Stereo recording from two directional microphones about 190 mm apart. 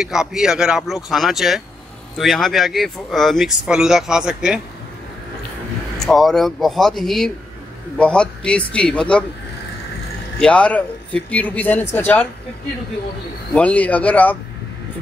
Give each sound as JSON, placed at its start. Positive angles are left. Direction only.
{"t": 0.0, "sound": "speech", "side_deg": -5}
{"t": 5.9, "sound": "speech", "side_deg": 0}
{"t": 10.4, "sound": "speech", "side_deg": 5}
{"t": 13.6, "sound": "speech", "side_deg": 5}